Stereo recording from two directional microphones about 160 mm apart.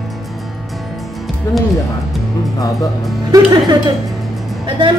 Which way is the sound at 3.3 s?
25° right (ahead or behind).